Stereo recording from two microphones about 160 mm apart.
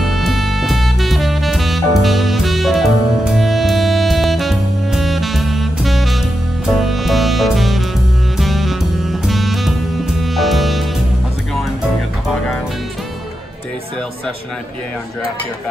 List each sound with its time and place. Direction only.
0.0 s music: centre (ahead or behind)